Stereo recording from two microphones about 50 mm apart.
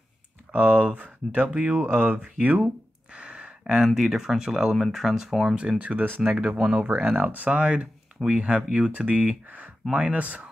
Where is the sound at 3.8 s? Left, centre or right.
Centre.